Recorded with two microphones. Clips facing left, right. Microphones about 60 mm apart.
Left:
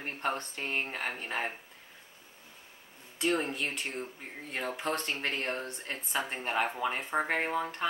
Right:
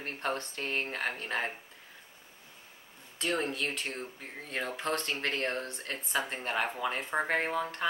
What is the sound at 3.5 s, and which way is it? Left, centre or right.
Speech, centre.